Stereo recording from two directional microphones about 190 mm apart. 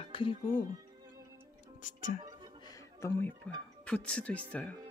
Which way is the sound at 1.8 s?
40° left (ahead or behind).